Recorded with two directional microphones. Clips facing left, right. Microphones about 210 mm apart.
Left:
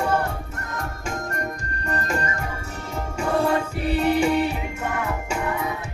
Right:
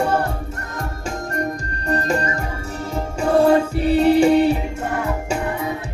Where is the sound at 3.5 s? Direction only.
35° right (ahead or behind).